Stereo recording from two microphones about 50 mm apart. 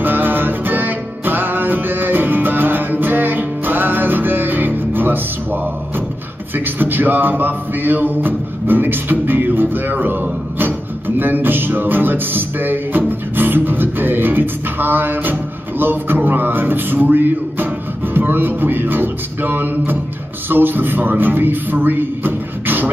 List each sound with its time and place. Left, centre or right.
0.0 s music: right